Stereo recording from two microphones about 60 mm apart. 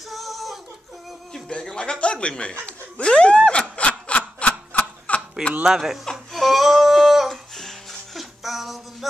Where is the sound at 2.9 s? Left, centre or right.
Centre.